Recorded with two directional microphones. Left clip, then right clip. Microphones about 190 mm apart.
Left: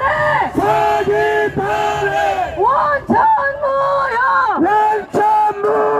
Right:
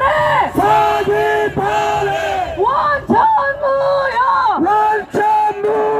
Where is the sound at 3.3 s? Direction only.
25° left (ahead or behind).